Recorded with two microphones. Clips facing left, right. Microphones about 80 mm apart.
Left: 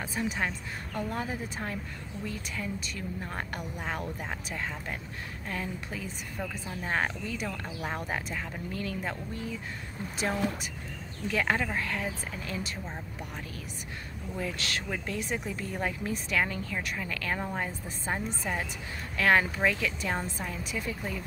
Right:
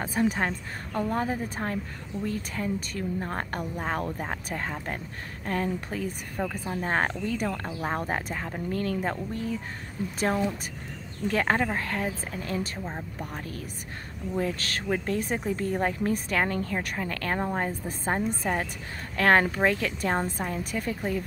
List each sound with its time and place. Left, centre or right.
0.0 s a woman's voice: right
14.4 s a woman's voice: right